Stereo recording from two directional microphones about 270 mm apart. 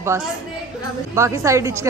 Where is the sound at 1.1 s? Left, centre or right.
Centre.